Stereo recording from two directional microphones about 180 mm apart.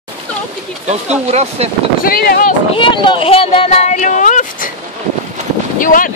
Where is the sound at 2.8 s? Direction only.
25° left (ahead or behind); by 4.6 s 45° left (ahead or behind).